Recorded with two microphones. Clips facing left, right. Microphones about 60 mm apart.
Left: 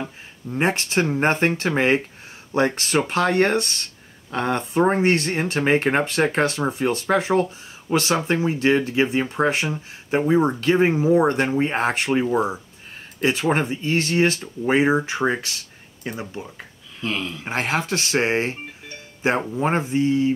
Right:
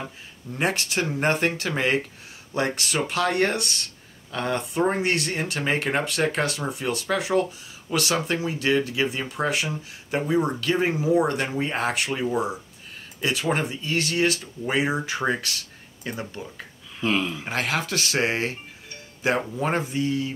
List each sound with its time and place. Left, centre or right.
0.5 s speech: left
17.0 s speech: centre
17.5 s speech: left